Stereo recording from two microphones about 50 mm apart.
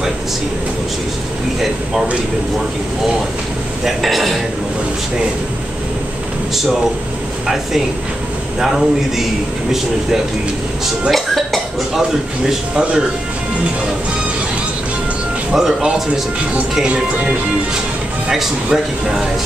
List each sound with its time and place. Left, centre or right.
3.8 s a man's voice: centre
8.5 s speech: centre
11.1 s dishes: centre
12.0 s speech: centre
15.5 s speech: centre
16.7 s speech: centre
18.7 s speech: centre